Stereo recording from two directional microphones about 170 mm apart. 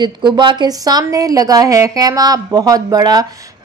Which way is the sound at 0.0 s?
25° right (ahead or behind).